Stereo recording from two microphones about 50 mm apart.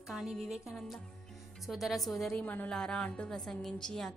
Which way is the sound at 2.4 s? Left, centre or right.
Left.